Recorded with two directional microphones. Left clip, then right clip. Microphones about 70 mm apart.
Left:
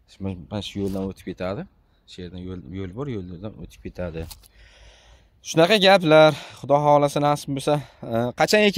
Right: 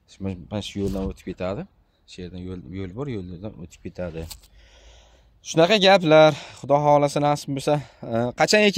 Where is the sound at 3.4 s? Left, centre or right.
Left.